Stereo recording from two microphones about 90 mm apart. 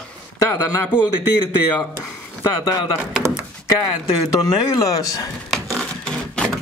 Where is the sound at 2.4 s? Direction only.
45° left (ahead or behind).